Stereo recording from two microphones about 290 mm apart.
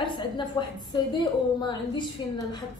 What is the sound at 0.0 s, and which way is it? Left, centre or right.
A woman's voice, centre.